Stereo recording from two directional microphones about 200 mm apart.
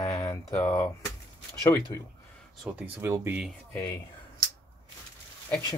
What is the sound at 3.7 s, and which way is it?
Speech, 15° left (ahead or behind).